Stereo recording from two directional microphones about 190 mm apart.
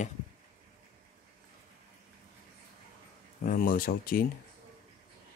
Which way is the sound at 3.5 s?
50° left (ahead or behind).